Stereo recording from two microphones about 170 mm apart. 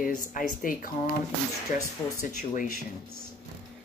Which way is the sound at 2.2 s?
50° left (ahead or behind).